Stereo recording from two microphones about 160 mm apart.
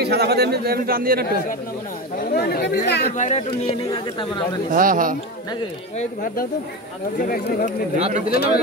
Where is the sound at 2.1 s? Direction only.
70° left (ahead or behind); by 3.1 s 90° left.